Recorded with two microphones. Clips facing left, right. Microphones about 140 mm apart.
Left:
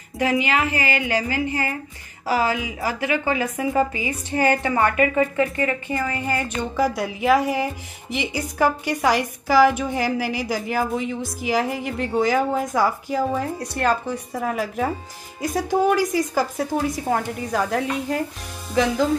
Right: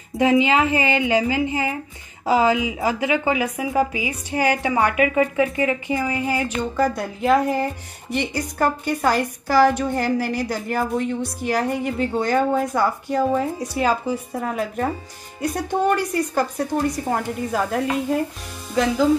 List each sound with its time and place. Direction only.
0.2 s a woman's voice: 20° right (ahead or behind); by 18.2 s centre (ahead or behind)